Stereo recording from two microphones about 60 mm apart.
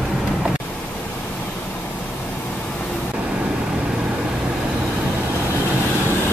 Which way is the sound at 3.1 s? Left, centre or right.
Centre.